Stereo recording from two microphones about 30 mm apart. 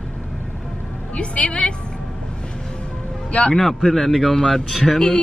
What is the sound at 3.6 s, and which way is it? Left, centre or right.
A man's voice, centre.